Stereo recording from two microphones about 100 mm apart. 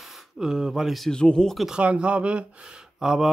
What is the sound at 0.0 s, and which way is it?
Speech, 5° right (ahead or behind).